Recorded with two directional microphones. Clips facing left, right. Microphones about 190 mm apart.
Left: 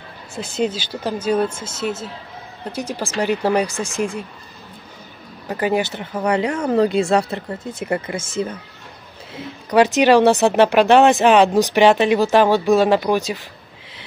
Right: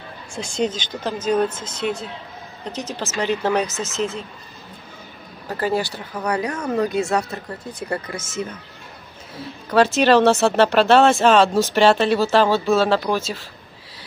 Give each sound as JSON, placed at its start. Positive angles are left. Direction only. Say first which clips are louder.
{"t": 0.3, "sound": "speech", "louder": "left 1 dB", "side_deg": 5}
{"t": 5.5, "sound": "speech", "louder": "left 2 dB", "side_deg": 20}
{"t": 9.4, "sound": "speech", "louder": "left 2 dB", "side_deg": 15}